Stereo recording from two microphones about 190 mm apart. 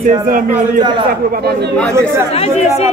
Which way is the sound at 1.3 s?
55° right (ahead or behind).